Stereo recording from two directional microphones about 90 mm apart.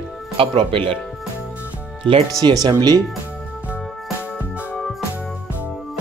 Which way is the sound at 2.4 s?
50° right (ahead or behind).